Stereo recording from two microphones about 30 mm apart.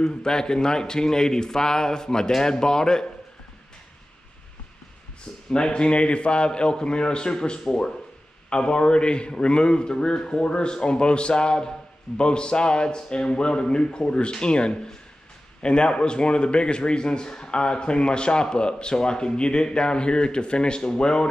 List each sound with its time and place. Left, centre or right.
0.0 s a man's voice: left
5.5 s a man's voice: left